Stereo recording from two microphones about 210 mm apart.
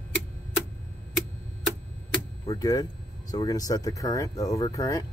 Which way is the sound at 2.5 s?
15° left (ahead or behind).